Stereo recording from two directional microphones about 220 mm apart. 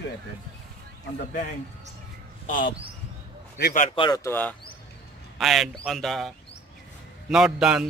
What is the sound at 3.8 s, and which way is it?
Speech, 20° left (ahead or behind).